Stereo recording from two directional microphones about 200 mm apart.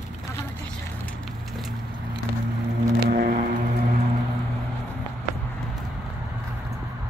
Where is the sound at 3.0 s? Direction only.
50° right (ahead or behind).